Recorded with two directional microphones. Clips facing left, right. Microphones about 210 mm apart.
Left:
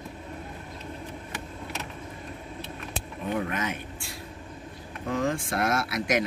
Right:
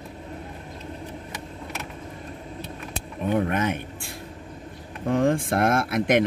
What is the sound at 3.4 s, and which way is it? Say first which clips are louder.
Speech: right 6 dB; 55° right (ahead or behind).